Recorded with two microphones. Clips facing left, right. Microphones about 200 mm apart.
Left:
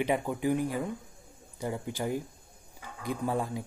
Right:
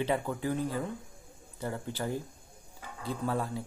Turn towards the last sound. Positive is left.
turn(degrees=15)  # may be behind; listen again after turning